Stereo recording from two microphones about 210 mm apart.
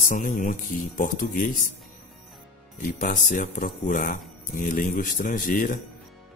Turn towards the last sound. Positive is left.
turn(degrees=40)  # may be behind; listen again after turning